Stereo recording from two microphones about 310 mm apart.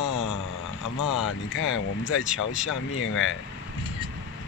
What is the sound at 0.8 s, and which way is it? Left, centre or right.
Speech, left.